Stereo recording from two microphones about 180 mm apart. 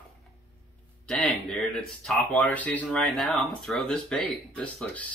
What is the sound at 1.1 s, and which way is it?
Speech, 5° left (ahead or behind).